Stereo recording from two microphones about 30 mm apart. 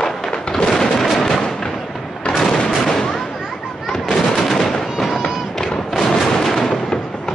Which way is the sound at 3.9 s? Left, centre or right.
Centre.